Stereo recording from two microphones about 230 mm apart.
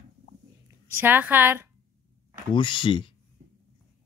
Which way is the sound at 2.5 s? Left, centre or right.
Left.